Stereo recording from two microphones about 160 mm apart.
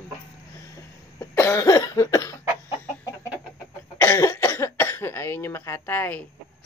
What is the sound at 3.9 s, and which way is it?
Cough, 20° left (ahead or behind).